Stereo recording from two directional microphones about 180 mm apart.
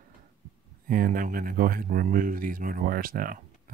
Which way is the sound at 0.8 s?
50° right (ahead or behind).